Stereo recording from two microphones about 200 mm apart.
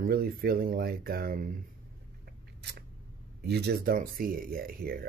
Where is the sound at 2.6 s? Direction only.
55° right (ahead or behind).